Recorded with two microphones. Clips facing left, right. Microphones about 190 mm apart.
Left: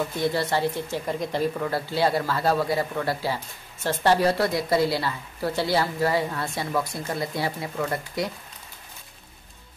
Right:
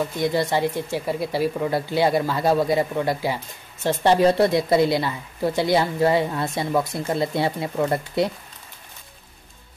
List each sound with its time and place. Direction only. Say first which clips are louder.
0.2 s a woman's voice: right 3 dB; 15° right (ahead or behind)